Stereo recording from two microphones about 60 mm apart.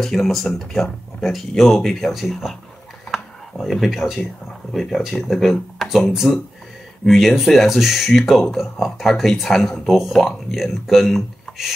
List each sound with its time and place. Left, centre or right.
0.0 s speech: centre
3.1 s a sound: centre
4.7 s speech: centre